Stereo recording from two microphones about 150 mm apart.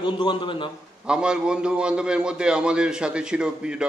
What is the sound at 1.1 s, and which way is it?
A man's voice, 5° right (ahead or behind).